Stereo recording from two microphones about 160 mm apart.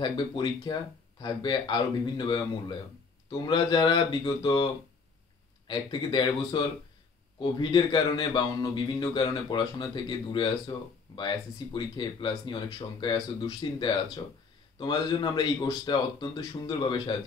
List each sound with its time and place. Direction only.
0.0 s a man's voice: 30° left (ahead or behind)
5.7 s a man's voice: 30° left (ahead or behind)